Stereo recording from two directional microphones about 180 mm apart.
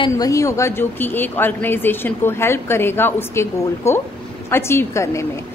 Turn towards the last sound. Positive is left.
turn(degrees=15)  # may be behind; listen again after turning